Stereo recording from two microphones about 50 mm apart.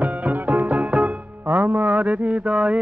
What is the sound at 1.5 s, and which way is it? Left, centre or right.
Mantra, right.